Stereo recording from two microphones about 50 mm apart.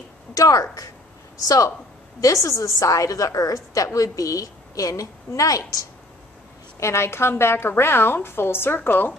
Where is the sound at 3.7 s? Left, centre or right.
Left.